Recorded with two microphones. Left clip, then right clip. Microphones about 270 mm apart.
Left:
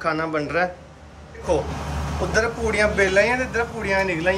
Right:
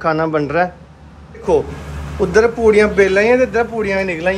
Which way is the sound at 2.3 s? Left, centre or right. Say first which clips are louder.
Right 11 dB; centre.